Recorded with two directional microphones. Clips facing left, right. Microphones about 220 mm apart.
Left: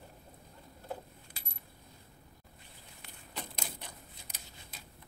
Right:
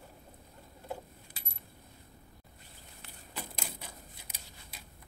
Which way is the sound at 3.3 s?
5° right (ahead or behind).